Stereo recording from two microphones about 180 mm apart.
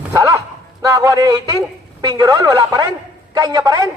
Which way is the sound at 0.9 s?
15° right (ahead or behind).